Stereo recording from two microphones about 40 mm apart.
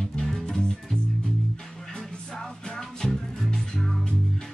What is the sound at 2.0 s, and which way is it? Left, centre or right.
Music, centre.